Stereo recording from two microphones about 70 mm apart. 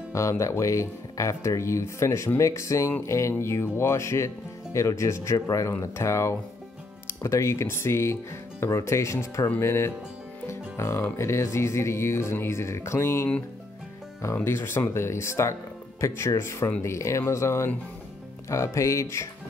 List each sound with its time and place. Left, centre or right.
0.1 s speech: left